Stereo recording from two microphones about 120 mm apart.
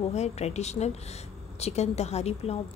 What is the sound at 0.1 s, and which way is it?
A woman's voice, 70° left (ahead or behind).